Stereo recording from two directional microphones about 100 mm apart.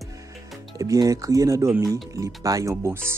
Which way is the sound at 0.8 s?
35° right (ahead or behind).